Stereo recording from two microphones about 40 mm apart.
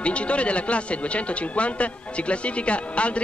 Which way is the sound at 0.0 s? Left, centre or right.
Left.